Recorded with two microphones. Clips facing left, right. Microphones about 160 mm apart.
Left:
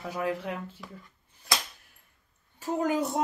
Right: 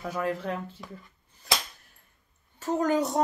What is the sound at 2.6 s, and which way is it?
Speech, 10° left (ahead or behind).